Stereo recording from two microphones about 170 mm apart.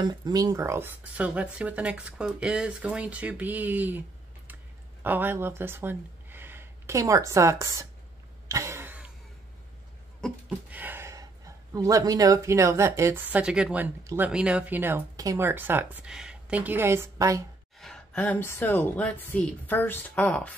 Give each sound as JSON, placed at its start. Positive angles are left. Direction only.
{"t": 0.0, "sound": "speech", "side_deg": -25}
{"t": 5.0, "sound": "speech", "side_deg": -10}
{"t": 8.5, "sound": "throat clearing", "side_deg": -15}
{"t": 10.2, "sound": "a sound", "side_deg": 5}
{"t": 10.7, "sound": "speech", "side_deg": -10}
{"t": 17.7, "sound": "a woman's voice", "side_deg": 5}